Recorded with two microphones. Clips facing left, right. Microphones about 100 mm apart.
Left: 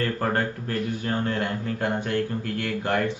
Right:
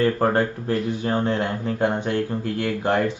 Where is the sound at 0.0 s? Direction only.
25° right (ahead or behind).